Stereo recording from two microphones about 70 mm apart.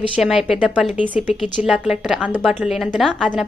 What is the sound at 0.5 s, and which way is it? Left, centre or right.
Speech, centre.